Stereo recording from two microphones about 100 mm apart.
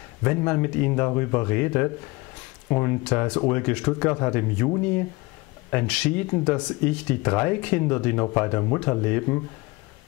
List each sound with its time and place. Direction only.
0.2 s speech: 20° left (ahead or behind)